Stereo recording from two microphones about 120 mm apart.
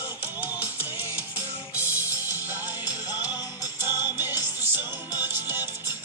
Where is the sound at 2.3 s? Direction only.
15° right (ahead or behind).